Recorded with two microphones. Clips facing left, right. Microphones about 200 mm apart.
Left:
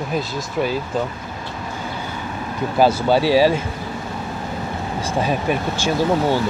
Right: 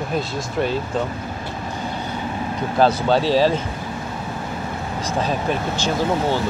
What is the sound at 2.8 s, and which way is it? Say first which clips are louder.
Speech: left 1 dB; 10° left (ahead or behind).